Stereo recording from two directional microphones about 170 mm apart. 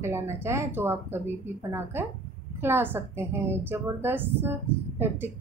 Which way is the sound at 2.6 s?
15° right (ahead or behind).